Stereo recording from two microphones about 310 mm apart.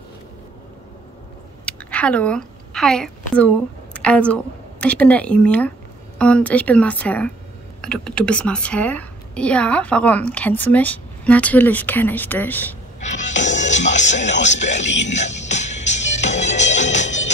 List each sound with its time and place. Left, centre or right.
1.7 s a sound: centre
3.3 s a woman's voice: centre
13.0 s music: left
13.9 s speech: left
14.8 s speech: left
15.0 s speech: left
15.4 s music: left